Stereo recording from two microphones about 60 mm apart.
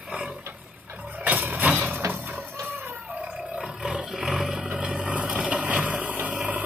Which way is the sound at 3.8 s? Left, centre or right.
Centre.